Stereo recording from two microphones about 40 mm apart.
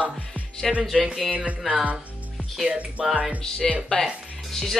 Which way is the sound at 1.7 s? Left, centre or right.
Right.